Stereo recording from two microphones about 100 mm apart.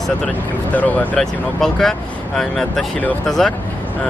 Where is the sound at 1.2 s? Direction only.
5° left (ahead or behind).